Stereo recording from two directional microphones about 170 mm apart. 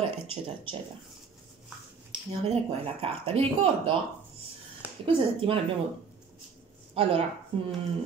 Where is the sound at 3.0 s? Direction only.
35° right (ahead or behind).